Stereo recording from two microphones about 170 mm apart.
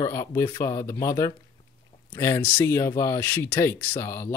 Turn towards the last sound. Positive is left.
turn(degrees=15)  # may be behind; listen again after turning